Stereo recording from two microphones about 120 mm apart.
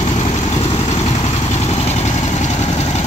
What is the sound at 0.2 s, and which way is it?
Vehicle, 60° left (ahead or behind).